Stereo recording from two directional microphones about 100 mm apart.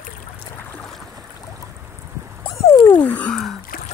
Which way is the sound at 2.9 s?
15° left (ahead or behind).